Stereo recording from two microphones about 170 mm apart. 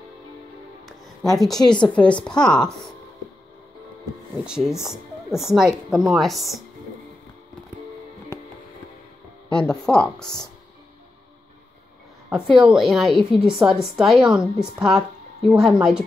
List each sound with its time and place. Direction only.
0.8 s music: centre (ahead or behind)
1.8 s a woman's voice: 5° left (ahead or behind)
4.5 s a woman's voice: 5° right (ahead or behind)
8.3 s music: 15° left (ahead or behind)
9.5 s a woman's voice: 5° left (ahead or behind)
12.3 s a woman's voice: 5° right (ahead or behind)